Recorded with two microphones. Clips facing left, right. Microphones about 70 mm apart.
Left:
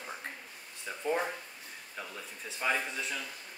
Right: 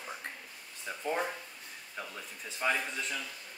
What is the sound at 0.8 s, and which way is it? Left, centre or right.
Speech, centre.